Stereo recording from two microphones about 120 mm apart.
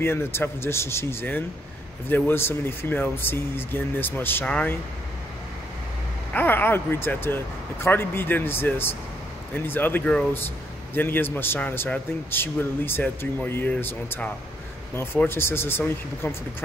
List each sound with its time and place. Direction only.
0.0 s a man's voice: 20° left (ahead or behind)
6.3 s a man's voice: 20° left (ahead or behind)